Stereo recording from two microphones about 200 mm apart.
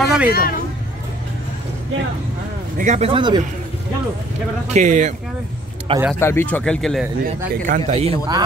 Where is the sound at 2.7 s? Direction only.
35° right (ahead or behind).